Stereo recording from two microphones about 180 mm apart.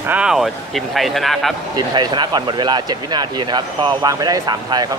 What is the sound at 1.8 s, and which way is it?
Speech, 25° right (ahead or behind).